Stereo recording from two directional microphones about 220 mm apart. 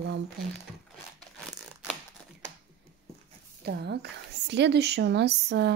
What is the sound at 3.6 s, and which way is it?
Speech, 50° right (ahead or behind).